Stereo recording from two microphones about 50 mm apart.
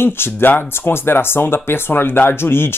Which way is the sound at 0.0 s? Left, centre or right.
Left.